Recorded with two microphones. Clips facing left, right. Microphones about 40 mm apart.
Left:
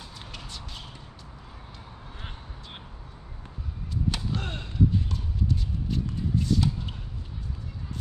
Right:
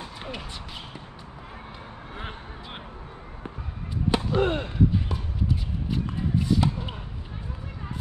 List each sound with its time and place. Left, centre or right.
0.0 s basketball bounce: right
2.1 s music: right
4.3 s a sound: right